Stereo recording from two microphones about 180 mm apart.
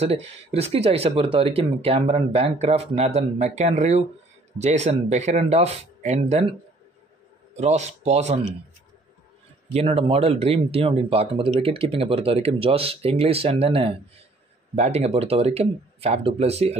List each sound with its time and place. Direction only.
0.0 s speech: 35° right (ahead or behind)
7.5 s speech: 40° right (ahead or behind)
9.7 s speech: 35° right (ahead or behind)